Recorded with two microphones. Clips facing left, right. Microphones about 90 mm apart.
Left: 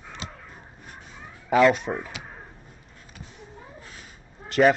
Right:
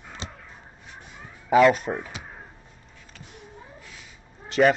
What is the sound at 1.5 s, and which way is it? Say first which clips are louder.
Speech: right 1 dB; centre (ahead or behind).